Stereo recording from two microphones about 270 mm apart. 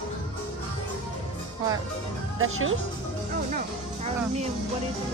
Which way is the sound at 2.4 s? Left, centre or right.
Right.